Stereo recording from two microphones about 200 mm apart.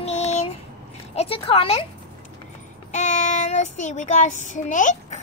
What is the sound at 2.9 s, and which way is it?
Child singing, 35° left (ahead or behind).